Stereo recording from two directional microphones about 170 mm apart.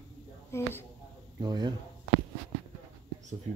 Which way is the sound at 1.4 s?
25° right (ahead or behind).